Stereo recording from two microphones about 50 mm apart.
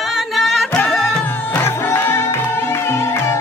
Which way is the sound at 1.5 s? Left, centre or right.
Left.